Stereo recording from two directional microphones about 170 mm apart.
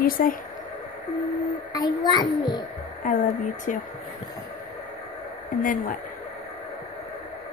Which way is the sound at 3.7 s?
50° left (ahead or behind).